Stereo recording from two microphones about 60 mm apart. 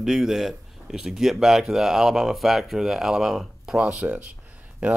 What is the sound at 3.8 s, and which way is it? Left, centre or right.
Speech, right.